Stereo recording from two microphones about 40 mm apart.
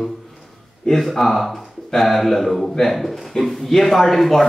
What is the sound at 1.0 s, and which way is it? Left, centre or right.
A man's voice, centre.